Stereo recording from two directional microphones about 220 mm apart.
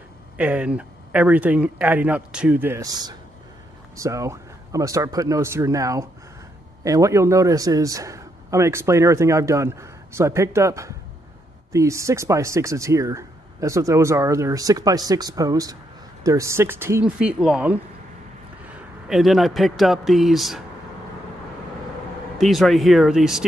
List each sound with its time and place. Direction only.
0.4 s a man's voice: 5° right (ahead or behind)
19.0 s speech: centre (ahead or behind)
22.4 s speech: centre (ahead or behind)